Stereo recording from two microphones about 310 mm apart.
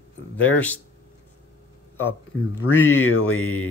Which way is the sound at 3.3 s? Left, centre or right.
Left.